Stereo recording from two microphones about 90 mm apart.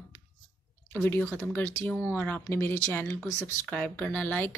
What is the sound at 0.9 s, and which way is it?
Speech, 20° left (ahead or behind).